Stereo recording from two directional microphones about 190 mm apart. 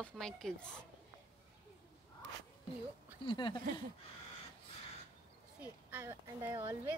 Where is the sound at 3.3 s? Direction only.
25° left (ahead or behind).